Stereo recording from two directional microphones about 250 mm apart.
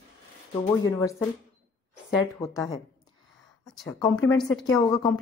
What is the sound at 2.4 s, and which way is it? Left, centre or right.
Speech, centre.